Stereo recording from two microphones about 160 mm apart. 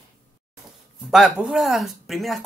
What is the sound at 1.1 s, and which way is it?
Speech, 5° right (ahead or behind).